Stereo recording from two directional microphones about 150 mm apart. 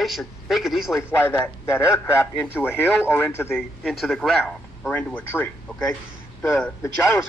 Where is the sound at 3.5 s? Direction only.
Centre (ahead or behind); by 6.9 s 15° left (ahead or behind).